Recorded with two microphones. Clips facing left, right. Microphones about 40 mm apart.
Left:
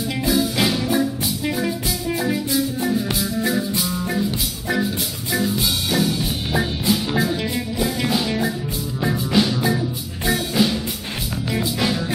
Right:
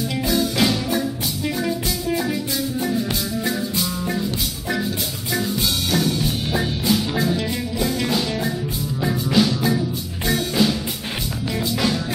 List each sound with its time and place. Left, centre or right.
0.2 s music: centre
5.3 s music: centre